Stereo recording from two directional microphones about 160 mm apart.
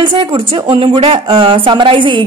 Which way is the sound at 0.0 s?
30° right (ahead or behind).